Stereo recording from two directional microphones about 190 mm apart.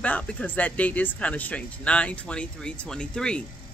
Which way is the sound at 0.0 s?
5° left (ahead or behind).